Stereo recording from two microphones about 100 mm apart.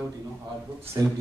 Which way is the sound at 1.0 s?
35° right (ahead or behind).